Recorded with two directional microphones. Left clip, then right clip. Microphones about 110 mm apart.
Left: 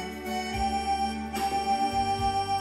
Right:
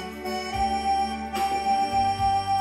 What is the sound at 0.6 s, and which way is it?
Music, 15° right (ahead or behind).